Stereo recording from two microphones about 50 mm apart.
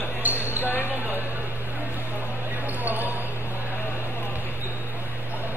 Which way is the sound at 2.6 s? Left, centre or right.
Right.